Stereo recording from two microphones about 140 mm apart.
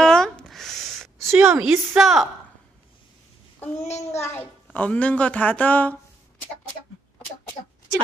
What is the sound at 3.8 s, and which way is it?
Speech, 55° left (ahead or behind).